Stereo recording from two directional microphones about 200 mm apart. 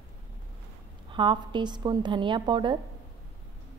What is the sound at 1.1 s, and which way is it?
A woman's voice, 25° right (ahead or behind).